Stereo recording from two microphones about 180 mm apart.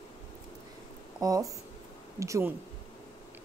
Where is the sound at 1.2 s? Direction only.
20° right (ahead or behind).